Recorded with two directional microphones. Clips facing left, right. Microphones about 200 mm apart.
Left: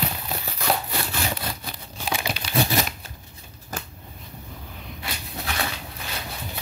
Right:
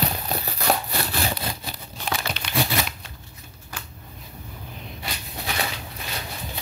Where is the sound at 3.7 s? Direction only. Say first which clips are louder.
Left 5 dB; 45° left (ahead or behind).